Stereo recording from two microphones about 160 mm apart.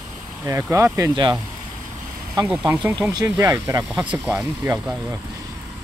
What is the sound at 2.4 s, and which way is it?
Speech, 10° right (ahead or behind).